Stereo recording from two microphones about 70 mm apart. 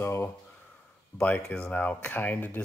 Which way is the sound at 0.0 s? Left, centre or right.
Left.